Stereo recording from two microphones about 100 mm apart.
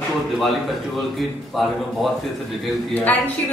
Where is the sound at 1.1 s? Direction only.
Centre (ahead or behind).